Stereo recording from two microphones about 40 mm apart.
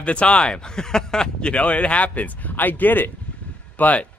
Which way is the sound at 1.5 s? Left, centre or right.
Left.